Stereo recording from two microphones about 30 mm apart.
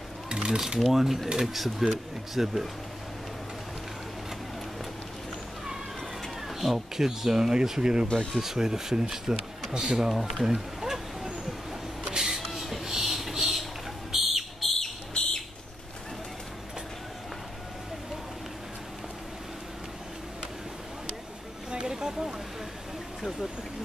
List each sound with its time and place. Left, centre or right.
0.3 s cutlery: right
0.9 s speech: centre
6.6 s speech: centre
7.1 s speech: centre
8.1 s speech: left
8.4 s speech: centre
10.0 s speech: centre
10.4 s speech: centre
12.2 s a sound: centre
12.4 s a sound: centre
14.1 s whistle: centre
14.6 s a sound: centre
21.6 s a sound: right